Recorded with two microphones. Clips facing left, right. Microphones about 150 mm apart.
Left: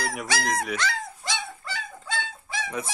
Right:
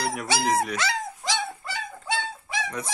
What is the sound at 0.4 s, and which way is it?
Speech, 5° right (ahead or behind).